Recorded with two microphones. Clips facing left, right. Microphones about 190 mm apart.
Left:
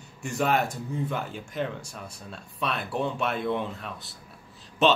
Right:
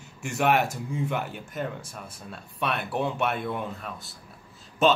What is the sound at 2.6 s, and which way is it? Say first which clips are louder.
Speech: right 1 dB; 65° right (ahead or behind).